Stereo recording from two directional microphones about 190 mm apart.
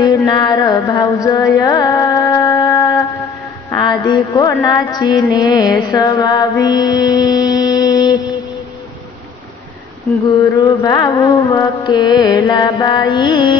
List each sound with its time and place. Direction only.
0.0 s music: 20° left (ahead or behind)
3.8 s a sound: 20° left (ahead or behind)
4.6 s music: 20° left (ahead or behind)
10.2 s music: 15° left (ahead or behind)